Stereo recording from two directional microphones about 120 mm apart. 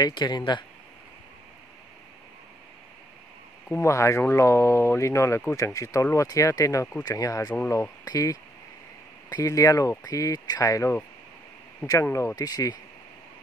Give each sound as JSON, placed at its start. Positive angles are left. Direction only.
{"t": 0.0, "sound": "speech", "side_deg": 35}
{"t": 3.6, "sound": "speech", "side_deg": 20}